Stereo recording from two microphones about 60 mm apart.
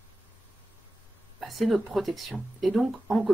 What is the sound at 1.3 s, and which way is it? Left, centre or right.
Speech, centre.